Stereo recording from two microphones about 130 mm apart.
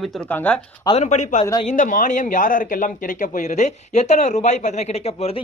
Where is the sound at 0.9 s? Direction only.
60° left (ahead or behind).